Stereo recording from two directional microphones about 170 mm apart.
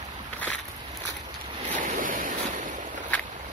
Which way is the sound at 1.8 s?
50° right (ahead or behind).